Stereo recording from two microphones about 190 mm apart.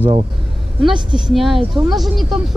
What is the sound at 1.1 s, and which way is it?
A woman's voice, centre (ahead or behind).